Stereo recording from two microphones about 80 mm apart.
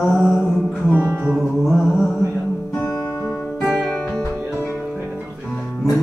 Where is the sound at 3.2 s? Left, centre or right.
Left.